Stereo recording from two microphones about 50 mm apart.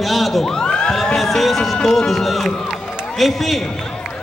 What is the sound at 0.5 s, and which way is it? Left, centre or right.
Crowd, centre.